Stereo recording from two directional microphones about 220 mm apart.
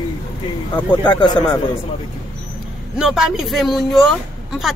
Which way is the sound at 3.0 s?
Centre (ahead or behind).